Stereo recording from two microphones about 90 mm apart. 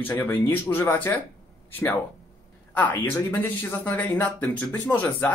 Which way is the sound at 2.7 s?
20° left (ahead or behind).